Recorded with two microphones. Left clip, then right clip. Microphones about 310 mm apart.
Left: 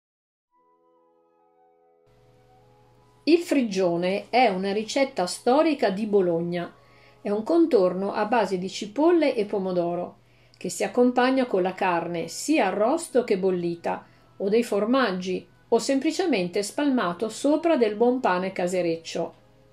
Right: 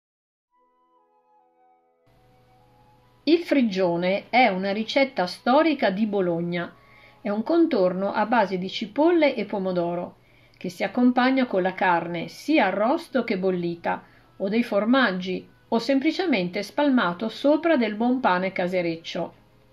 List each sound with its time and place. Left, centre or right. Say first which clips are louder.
3.3 s speech: right 1 dB; right